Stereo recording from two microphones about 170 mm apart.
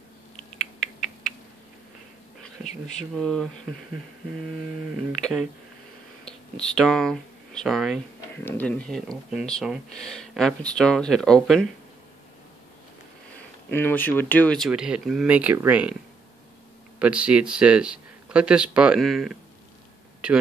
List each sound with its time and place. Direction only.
2.6 s speech: 45° left (ahead or behind)
3.2 s speech: 5° left (ahead or behind)
5.2 s speech: centre (ahead or behind)
6.5 s speech: 5° left (ahead or behind)
8.4 s speech: 10° left (ahead or behind)
13.7 s speech: 10° left (ahead or behind)
14.7 s speech: 5° right (ahead or behind)
17.0 s speech: 5° right (ahead or behind)